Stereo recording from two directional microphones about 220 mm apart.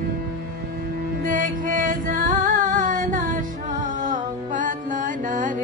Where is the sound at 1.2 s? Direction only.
35° right (ahead or behind).